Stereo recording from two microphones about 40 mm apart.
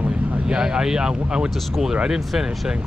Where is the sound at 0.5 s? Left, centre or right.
Centre.